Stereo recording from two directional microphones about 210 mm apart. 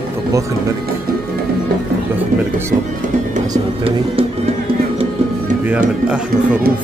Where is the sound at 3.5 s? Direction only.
25° right (ahead or behind).